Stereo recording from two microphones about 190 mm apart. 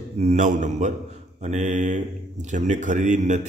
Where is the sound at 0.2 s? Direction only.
40° right (ahead or behind).